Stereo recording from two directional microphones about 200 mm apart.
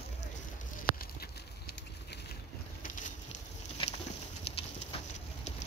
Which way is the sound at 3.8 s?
25° left (ahead or behind).